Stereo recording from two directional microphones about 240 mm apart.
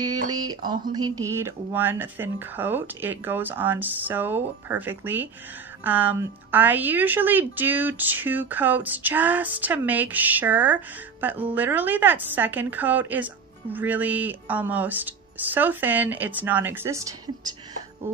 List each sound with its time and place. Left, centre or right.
0.3 s speech: centre
18.1 s speech: centre